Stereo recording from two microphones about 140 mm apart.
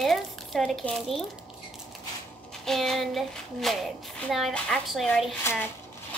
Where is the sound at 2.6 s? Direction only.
Centre (ahead or behind).